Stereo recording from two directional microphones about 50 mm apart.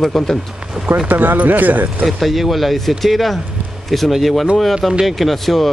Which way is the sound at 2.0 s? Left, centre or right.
Centre.